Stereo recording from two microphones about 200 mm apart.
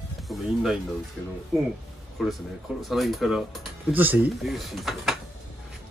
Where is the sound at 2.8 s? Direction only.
Centre (ahead or behind).